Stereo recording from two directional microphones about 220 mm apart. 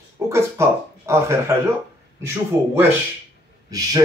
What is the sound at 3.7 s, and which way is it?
Speech, 15° right (ahead or behind).